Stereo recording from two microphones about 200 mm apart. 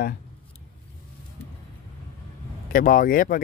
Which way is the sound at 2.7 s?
45° left (ahead or behind).